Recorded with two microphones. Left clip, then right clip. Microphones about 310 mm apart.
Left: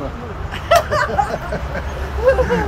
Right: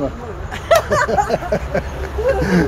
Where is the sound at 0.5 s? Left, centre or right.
Right.